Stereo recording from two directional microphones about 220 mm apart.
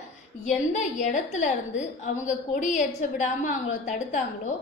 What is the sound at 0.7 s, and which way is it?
A woman's voice, 35° left (ahead or behind).